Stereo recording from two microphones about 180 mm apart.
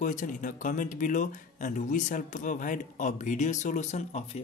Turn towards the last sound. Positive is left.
turn(degrees=40)  # may be behind; listen again after turning